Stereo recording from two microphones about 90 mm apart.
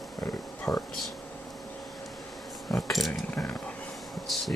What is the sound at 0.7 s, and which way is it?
Speech, 40° left (ahead or behind).